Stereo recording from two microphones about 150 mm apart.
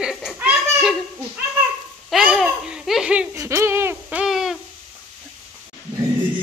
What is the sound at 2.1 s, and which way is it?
Babbling, centre (ahead or behind).